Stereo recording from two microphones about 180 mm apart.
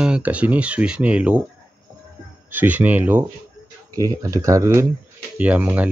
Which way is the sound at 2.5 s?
10° right (ahead or behind).